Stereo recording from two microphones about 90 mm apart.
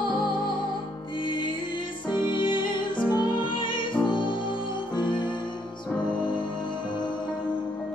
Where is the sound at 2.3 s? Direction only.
60° left (ahead or behind).